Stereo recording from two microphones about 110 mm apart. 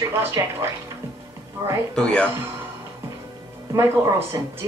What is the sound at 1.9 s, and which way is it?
Speech, 10° left (ahead or behind).